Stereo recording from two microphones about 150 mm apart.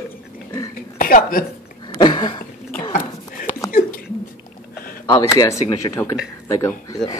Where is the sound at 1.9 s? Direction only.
30° left (ahead or behind).